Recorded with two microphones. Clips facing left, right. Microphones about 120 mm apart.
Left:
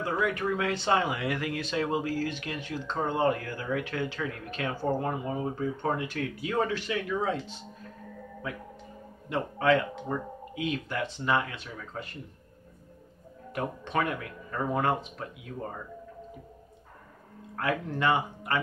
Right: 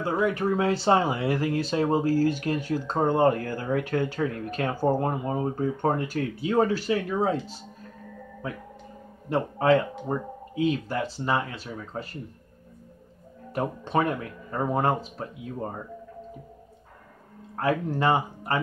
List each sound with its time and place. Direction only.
0.0 s speech: 30° right (ahead or behind)
9.3 s speech: 35° right (ahead or behind)
13.5 s speech: 30° right (ahead or behind)
17.6 s speech: 30° right (ahead or behind)